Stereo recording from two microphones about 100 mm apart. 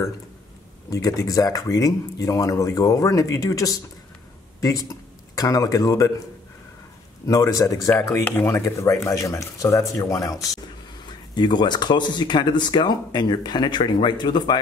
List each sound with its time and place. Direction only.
0.8 s a man's voice: 35° left (ahead or behind)
7.2 s speech: 35° left (ahead or behind)
8.2 s speech: 15° left (ahead or behind)
8.5 s speech: 30° left (ahead or behind)
11.3 s speech: 45° left (ahead or behind)